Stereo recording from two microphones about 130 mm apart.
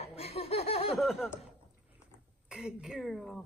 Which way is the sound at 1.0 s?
Centre (ahead or behind).